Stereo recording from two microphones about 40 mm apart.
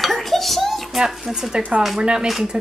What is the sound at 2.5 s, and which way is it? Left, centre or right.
Music, centre.